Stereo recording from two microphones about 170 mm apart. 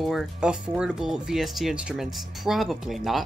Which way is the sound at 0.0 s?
Centre (ahead or behind).